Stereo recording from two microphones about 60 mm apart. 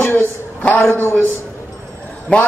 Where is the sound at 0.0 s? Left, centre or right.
Left.